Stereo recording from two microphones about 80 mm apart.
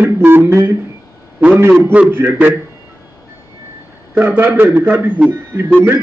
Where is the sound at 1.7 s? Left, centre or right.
Right.